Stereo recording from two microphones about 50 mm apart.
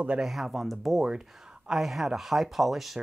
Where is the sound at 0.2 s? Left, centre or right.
Centre.